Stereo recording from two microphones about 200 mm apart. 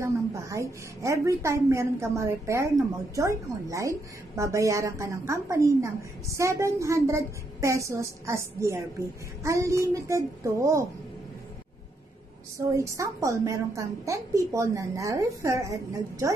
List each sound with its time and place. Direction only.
0.0 s a woman's voice: 15° right (ahead or behind)
12.5 s a woman's voice: 15° right (ahead or behind)